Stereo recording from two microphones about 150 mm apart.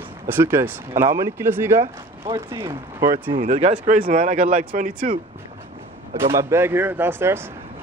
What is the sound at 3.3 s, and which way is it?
Speech, 50° right (ahead or behind).